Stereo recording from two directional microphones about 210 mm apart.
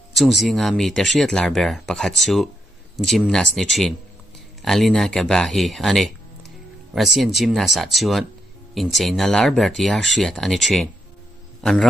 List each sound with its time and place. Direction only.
0.1 s speech: centre (ahead or behind)